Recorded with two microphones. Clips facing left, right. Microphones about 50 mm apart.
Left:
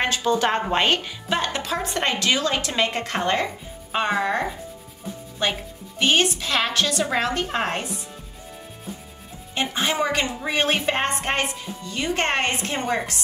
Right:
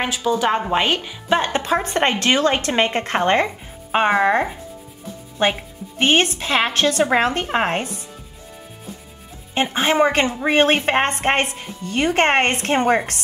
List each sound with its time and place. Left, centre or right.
0.0 s a woman's voice: centre
1.3 s speech: right
9.8 s a woman's voice: right